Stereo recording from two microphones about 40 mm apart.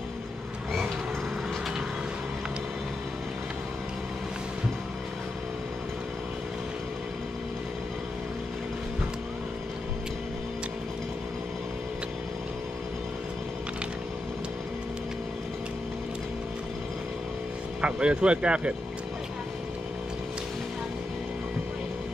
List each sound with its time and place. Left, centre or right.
17.8 s speech: right